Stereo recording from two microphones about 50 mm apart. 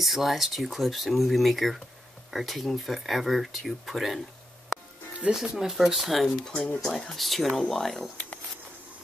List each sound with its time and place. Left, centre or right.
0.0 s speech: centre
5.2 s speech: right
5.6 s speech: centre
6.2 s speech: centre
6.5 s speech: left
6.8 s speech: centre